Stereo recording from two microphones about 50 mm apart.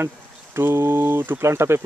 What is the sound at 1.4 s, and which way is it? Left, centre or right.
Speech, right.